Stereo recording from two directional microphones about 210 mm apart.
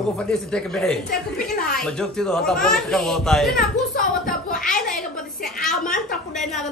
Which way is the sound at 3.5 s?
40° left (ahead or behind).